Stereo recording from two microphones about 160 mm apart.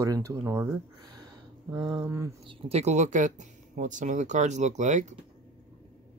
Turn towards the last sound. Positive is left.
turn(degrees=-50)  # may be behind; listen again after turning